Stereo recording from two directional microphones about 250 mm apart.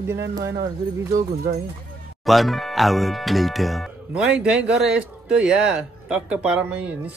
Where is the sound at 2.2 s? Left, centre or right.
Centre.